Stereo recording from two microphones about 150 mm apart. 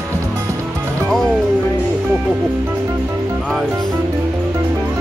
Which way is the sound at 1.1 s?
Centre (ahead or behind).